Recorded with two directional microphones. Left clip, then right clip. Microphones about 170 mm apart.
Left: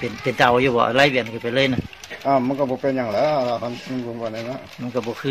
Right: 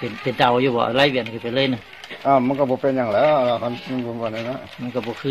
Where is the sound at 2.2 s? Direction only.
15° right (ahead or behind).